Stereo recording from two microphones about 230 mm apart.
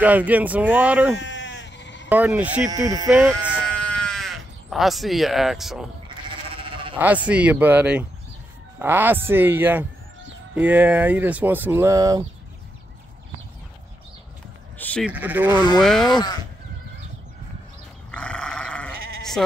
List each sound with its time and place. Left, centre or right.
0.0 s speech: centre
1.1 s sheep: left
2.0 s speech: centre
2.7 s speech: centre
3.1 s speech: centre
3.7 s sheep: centre
6.0 s sheep: right
7.2 s speech: centre
15.0 s speech: centre
16.1 s speech: centre
18.1 s sheep: centre